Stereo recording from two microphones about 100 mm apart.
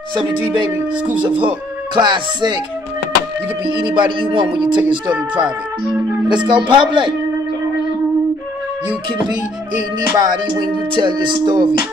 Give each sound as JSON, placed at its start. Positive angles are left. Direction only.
{"t": 0.1, "sound": "speech", "side_deg": -55}
{"t": 2.0, "sound": "music", "side_deg": -50}
{"t": 3.8, "sound": "music", "side_deg": -55}
{"t": 6.2, "sound": "music", "side_deg": -50}
{"t": 10.1, "sound": "music", "side_deg": -45}